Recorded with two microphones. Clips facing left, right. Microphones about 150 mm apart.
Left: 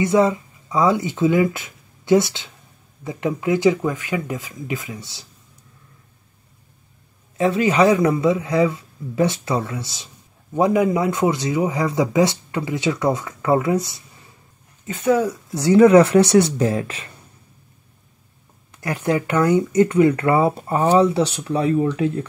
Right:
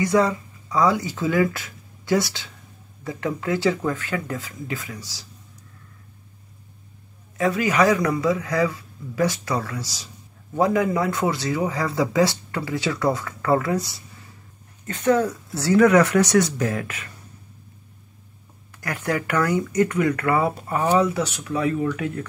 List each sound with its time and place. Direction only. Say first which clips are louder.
0.0 s speech: left 3 dB; 20° left (ahead or behind)
7.3 s a man's voice: left 3 dB; 25° left (ahead or behind)
14.9 s a man's voice: left 1 dB; 5° left (ahead or behind); by 17.1 s 30° left (ahead or behind)
18.8 s a man's voice: left 4 dB; 25° left (ahead or behind)